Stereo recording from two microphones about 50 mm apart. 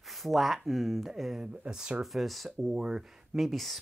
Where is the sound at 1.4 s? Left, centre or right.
Centre.